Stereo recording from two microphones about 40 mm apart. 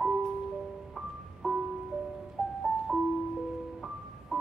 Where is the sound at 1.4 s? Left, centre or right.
Centre.